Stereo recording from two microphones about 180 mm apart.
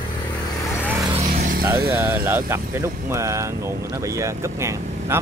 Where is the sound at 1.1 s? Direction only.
35° right (ahead or behind).